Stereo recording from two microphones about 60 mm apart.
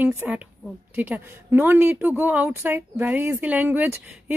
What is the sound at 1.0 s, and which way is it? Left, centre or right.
Speech, right.